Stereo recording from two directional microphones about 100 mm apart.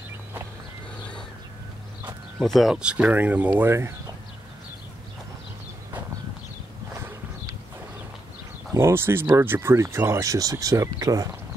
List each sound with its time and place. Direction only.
2.4 s speech: centre (ahead or behind); by 3.9 s 25° right (ahead or behind)
8.7 s speech: 25° right (ahead or behind)